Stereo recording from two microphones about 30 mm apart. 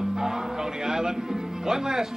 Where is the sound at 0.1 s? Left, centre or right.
Centre.